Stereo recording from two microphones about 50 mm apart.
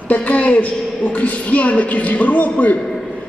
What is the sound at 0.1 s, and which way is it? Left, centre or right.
A woman's voice, left.